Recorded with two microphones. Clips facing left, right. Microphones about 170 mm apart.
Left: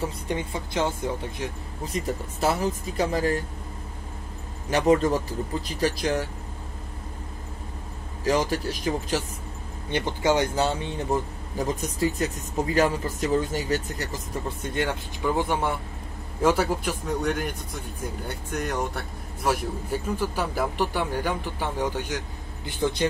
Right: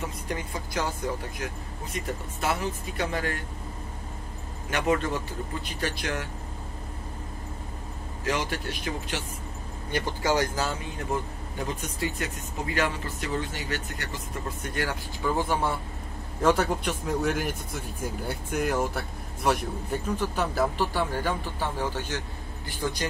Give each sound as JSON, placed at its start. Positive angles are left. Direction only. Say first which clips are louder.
{"t": 0.0, "sound": "speech", "louder": "left 4 dB", "side_deg": 25}
{"t": 4.6, "sound": "speech", "louder": "left 6 dB", "side_deg": 35}
{"t": 8.3, "sound": "speech", "louder": "left 6 dB", "side_deg": 35}
{"t": 9.8, "sound": "speech", "louder": "left 3 dB", "side_deg": 20}
{"t": 14.7, "sound": "speech", "louder": "left 4 dB", "side_deg": 20}
{"t": 16.3, "sound": "speech", "louder": "left 1 dB", "side_deg": 10}